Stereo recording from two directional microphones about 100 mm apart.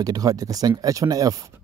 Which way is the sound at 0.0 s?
40° right (ahead or behind).